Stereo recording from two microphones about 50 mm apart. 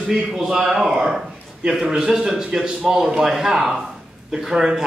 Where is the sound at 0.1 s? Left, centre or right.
Centre.